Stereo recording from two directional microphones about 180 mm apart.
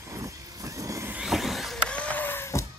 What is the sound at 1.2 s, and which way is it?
Power windows, centre (ahead or behind).